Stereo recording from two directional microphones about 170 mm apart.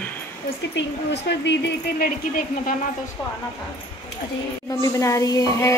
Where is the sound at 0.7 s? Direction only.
90° left.